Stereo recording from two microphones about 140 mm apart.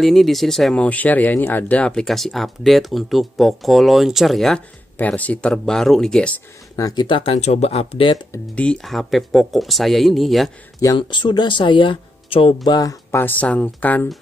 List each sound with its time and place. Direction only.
0.0 s speech: centre (ahead or behind)
6.8 s speech: 30° left (ahead or behind)
7.3 s speech: 50° left (ahead or behind)
8.5 s speech: 5° left (ahead or behind)
11.0 s speech: 35° left (ahead or behind)
12.6 s speech: 25° left (ahead or behind)
13.2 s speech: 10° left (ahead or behind)